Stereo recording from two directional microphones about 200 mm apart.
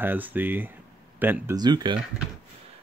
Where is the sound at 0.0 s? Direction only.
10° right (ahead or behind).